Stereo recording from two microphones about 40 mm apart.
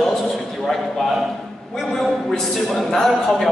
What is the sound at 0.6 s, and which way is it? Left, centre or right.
A man's voice, centre.